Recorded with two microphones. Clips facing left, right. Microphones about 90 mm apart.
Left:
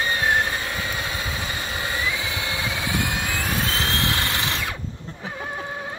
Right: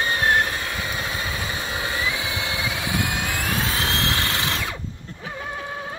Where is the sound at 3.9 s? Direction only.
20° right (ahead or behind).